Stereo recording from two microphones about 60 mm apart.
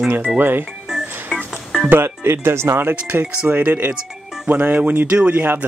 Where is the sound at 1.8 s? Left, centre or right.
Right.